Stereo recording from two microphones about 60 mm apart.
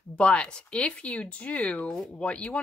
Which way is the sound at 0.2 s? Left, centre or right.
Centre.